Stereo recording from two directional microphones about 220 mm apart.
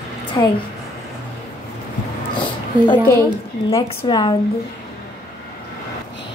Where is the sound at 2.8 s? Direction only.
15° left (ahead or behind).